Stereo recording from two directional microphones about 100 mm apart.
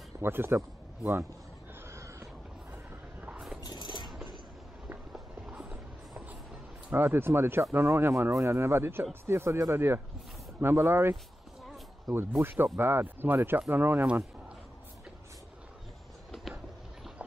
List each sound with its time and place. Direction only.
0.2 s speech: 25° right (ahead or behind)
1.9 s a sound: 25° right (ahead or behind)
2.7 s vehicle: 15° right (ahead or behind)
3.6 s a sound: 50° left (ahead or behind)
5.1 s clip-clop: 10° right (ahead or behind)
6.9 s speech: 20° right (ahead or behind)